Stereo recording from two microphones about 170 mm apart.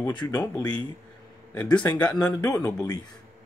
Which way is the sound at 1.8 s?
10° left (ahead or behind).